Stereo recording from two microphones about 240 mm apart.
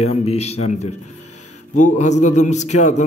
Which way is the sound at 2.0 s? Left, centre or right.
Left.